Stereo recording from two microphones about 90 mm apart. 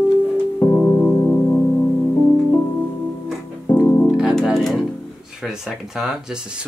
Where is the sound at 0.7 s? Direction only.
20° left (ahead or behind).